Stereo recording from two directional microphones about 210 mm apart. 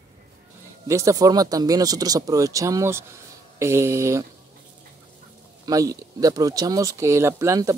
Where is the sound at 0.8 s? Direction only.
15° right (ahead or behind).